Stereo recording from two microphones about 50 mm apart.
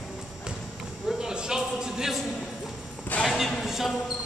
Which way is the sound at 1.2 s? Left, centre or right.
Centre.